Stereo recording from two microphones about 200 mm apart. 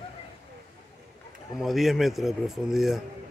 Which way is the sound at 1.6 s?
Centre (ahead or behind).